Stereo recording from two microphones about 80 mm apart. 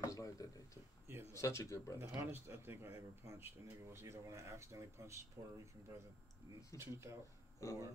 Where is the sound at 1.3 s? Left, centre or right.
Left.